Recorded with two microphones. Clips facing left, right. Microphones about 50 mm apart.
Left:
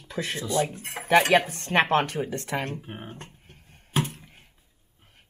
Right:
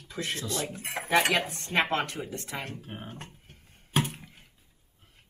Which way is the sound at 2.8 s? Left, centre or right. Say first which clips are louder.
Left 2 dB; centre.